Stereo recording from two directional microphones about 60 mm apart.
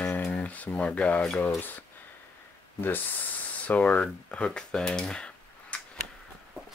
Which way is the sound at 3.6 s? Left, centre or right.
Left.